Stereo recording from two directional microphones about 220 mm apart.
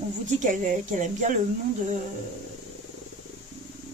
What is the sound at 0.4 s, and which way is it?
Speech, 35° right (ahead or behind).